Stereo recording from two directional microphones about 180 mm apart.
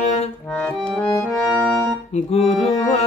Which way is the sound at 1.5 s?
10° left (ahead or behind).